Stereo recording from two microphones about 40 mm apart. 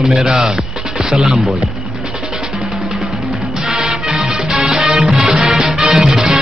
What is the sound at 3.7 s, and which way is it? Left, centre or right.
Music, centre.